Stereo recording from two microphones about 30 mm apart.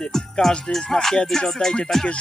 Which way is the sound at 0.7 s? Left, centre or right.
Centre.